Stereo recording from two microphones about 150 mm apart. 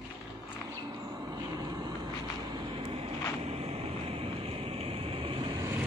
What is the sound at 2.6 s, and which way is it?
Vehicle, 35° right (ahead or behind).